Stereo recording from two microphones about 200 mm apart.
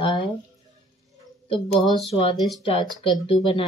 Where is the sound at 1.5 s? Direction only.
25° left (ahead or behind).